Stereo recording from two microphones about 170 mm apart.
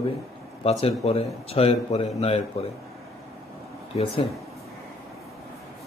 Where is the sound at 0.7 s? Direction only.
35° left (ahead or behind).